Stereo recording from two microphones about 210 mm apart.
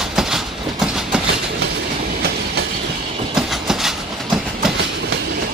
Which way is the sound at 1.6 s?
50° right (ahead or behind).